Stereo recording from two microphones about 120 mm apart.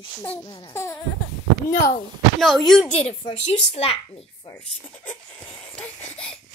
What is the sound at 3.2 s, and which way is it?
A child's voice, 55° left (ahead or behind).